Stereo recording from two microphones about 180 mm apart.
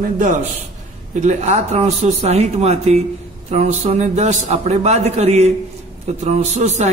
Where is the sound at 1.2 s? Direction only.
40° right (ahead or behind).